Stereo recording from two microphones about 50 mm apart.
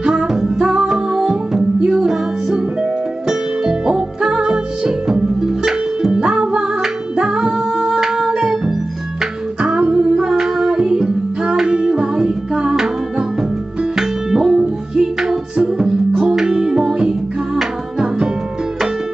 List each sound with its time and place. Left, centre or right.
0.0 s music: centre
13.9 s music: centre